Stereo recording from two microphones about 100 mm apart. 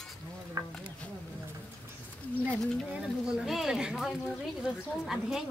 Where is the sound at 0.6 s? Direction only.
40° right (ahead or behind).